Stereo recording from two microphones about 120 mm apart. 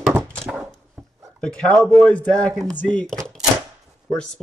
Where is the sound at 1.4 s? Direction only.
5° left (ahead or behind).